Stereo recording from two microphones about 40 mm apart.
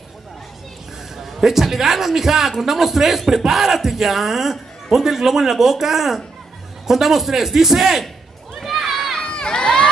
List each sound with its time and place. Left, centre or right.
1.1 s a man's voice: centre
8.6 s a sound: centre
9.3 s crowd: left